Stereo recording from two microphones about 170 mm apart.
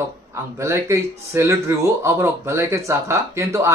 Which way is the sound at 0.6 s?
15° right (ahead or behind).